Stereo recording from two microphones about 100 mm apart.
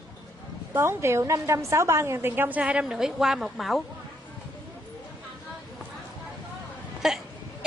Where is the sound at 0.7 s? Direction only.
25° right (ahead or behind); by 3.8 s centre (ahead or behind).